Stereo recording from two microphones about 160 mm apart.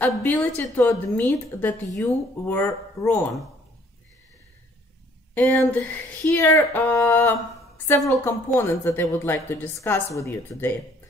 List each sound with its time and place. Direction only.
0.2 s a woman's voice: 10° left (ahead or behind)
5.3 s a woman's voice: 10° left (ahead or behind)